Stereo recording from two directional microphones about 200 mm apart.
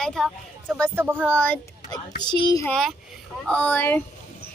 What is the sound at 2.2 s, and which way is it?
Speech, 20° left (ahead or behind).